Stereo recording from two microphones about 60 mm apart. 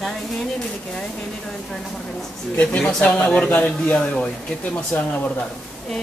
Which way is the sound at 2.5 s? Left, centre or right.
Left.